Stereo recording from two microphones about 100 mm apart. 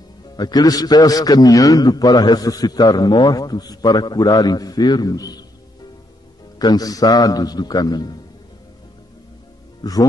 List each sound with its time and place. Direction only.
0.4 s a man's voice: 40° left (ahead or behind)
6.6 s a man's voice: 40° left (ahead or behind)
9.8 s speech: 40° left (ahead or behind)